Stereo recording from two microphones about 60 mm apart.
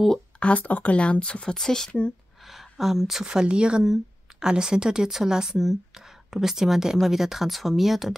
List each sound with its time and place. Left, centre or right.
0.4 s speech: left; by 1.9 s centre
2.4 s a woman's voice: centre